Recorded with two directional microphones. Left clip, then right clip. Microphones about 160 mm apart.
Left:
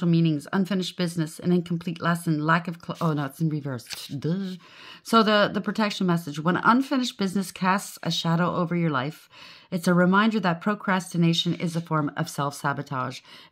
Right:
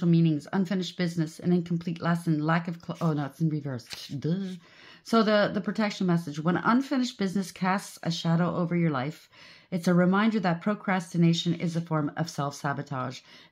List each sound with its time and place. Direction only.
0.0 s speech: 30° left (ahead or behind)